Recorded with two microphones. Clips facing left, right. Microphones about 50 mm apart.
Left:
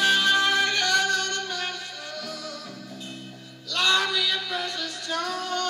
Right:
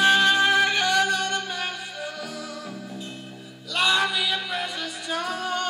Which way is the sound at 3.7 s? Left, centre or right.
Centre.